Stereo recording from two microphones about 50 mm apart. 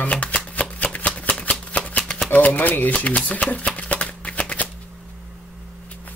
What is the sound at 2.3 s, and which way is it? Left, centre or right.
Speech, left.